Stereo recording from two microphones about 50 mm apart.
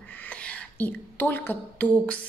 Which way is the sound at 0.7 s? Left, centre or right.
Left.